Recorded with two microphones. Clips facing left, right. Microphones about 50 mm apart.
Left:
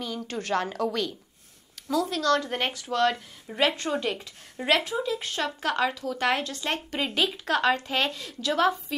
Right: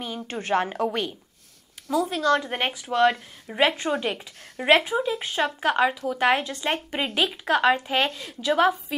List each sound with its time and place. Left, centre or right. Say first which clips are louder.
0.3 s a woman's voice: right 4 dB; right